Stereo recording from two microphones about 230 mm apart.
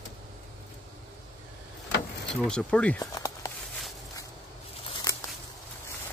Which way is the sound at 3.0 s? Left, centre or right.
Centre.